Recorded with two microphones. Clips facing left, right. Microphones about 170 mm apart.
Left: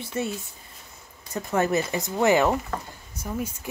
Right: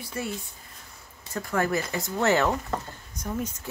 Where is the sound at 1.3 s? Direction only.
20° left (ahead or behind).